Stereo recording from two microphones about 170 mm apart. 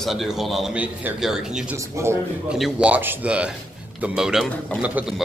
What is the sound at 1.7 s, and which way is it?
Speech, 15° right (ahead or behind).